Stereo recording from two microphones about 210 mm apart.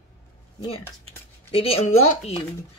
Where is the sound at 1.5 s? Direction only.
25° left (ahead or behind).